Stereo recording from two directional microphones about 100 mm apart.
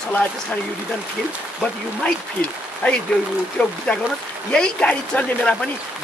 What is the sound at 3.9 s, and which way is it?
Speech, 5° left (ahead or behind).